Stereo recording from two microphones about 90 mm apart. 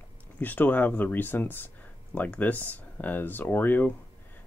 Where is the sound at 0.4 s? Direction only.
20° left (ahead or behind).